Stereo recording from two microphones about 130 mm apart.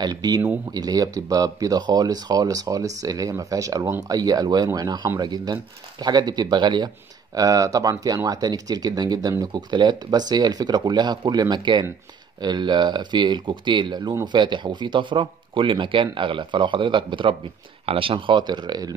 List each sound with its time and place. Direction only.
0.0 s speech: 30° right (ahead or behind)